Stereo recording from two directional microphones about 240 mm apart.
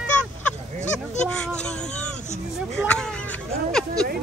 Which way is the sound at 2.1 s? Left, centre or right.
Left.